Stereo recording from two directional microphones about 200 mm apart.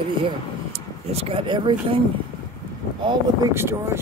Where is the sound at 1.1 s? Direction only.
30° right (ahead or behind).